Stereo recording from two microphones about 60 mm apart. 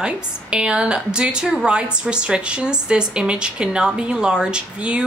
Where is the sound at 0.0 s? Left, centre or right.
Centre.